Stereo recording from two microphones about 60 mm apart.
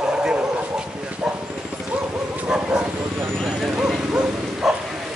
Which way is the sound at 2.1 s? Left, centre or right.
Right.